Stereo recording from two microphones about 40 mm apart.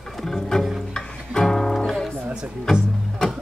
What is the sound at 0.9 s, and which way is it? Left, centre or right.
Music, centre.